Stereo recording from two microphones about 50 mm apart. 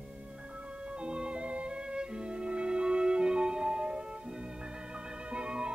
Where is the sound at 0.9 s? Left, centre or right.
Centre.